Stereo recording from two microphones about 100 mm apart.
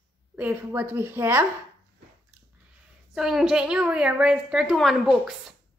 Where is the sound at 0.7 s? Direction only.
30° right (ahead or behind).